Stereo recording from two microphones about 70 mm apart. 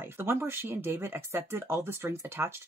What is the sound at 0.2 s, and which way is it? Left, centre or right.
Speech, right.